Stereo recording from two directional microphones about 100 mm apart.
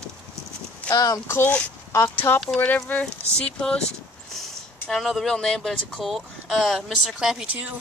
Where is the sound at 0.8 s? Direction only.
40° left (ahead or behind); by 7.7 s 10° right (ahead or behind).